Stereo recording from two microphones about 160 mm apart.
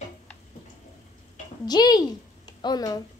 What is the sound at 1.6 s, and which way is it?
A woman's voice, 25° left (ahead or behind).